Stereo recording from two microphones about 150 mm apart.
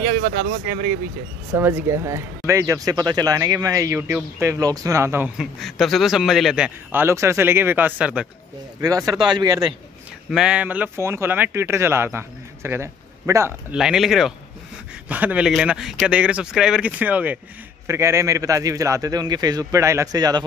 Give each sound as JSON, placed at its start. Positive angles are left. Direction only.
{"t": 0.2, "sound": "speech", "side_deg": -65}
{"t": 1.6, "sound": "a man's voice", "side_deg": -15}
{"t": 5.4, "sound": "speech", "side_deg": 0}
{"t": 8.8, "sound": "a man's voice", "side_deg": -25}
{"t": 10.3, "sound": "speech", "side_deg": -5}
{"t": 13.7, "sound": "a man's voice", "side_deg": -5}